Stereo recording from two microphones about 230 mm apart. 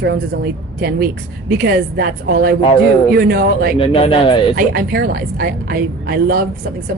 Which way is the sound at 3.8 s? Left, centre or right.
Left.